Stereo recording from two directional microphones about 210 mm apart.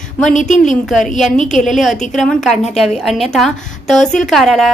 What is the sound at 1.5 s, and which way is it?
A woman's voice, centre (ahead or behind).